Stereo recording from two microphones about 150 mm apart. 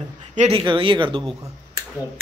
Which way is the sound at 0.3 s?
50° right (ahead or behind).